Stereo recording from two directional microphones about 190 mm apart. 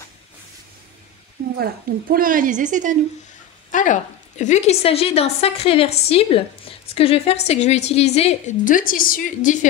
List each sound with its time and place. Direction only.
1.6 s a woman's voice: 50° right (ahead or behind)
3.7 s a woman's voice: 40° left (ahead or behind)